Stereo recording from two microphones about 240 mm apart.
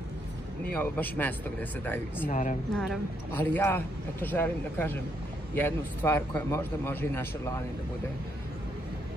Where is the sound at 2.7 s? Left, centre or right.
Centre.